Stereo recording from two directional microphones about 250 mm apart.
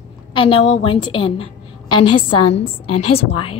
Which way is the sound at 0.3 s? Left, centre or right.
Centre.